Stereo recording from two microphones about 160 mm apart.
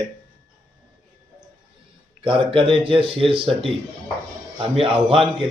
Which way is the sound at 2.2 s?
35° right (ahead or behind).